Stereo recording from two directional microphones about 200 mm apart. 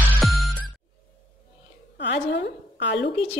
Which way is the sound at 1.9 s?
60° left (ahead or behind).